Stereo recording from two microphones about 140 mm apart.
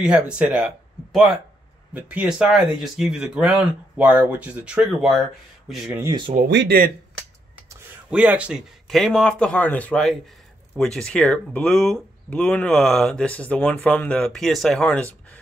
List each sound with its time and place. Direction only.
0.0 s speech: 10° right (ahead or behind)
6.3 s speech: 55° right (ahead or behind)
8.1 s speech: 10° right (ahead or behind)
8.8 s speech: centre (ahead or behind)